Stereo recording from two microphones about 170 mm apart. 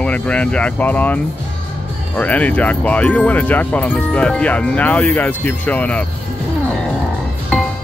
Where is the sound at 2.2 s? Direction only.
10° left (ahead or behind).